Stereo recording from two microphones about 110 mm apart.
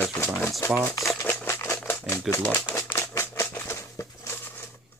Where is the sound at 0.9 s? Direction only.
25° left (ahead or behind).